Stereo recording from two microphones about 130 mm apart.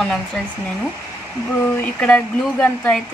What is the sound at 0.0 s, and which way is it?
Speech, 5° left (ahead or behind).